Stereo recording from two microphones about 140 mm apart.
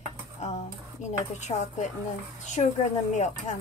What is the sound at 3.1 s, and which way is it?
Speech, 55° left (ahead or behind).